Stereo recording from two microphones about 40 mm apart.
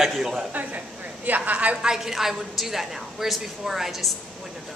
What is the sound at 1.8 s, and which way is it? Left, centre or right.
A woman's voice, centre.